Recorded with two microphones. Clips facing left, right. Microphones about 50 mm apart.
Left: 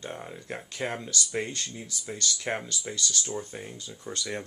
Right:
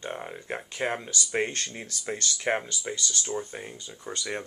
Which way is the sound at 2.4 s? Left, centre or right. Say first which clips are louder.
Right 8 dB; right.